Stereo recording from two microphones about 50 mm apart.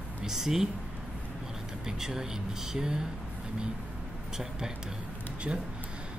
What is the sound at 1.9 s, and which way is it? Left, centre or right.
Speech, centre.